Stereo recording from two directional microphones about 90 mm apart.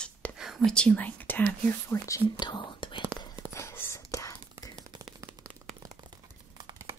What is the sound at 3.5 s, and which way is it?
Whispering, 30° left (ahead or behind).